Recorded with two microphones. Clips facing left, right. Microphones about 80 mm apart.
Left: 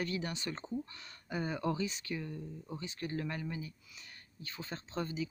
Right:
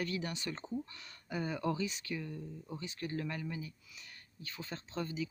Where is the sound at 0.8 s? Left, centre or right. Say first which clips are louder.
Left 1 dB; centre.